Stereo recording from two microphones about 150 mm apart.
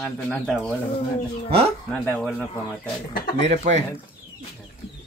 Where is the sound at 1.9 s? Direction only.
5° left (ahead or behind).